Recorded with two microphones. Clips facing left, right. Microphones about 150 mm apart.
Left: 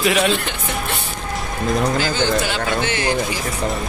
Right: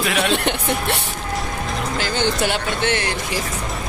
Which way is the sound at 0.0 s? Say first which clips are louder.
Left 4 dB; 5° left (ahead or behind).